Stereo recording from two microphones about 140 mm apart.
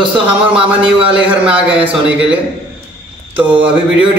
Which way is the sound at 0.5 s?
40° right (ahead or behind).